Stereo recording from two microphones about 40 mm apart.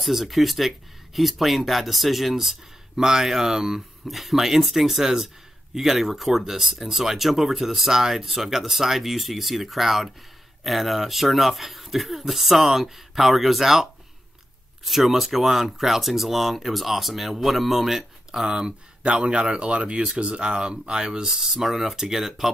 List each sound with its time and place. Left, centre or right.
0.0 s speech: centre
14.9 s speech: centre
19.2 s speech: right; by 22.5 s centre